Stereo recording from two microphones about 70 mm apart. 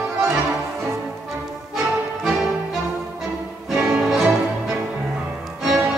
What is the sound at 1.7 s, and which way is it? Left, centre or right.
Music, centre.